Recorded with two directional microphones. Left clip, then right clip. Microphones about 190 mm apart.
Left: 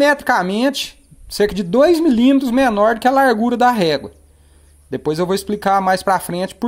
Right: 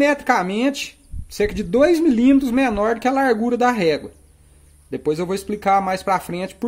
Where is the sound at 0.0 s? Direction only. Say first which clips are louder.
Left 3 dB; 30° left (ahead or behind).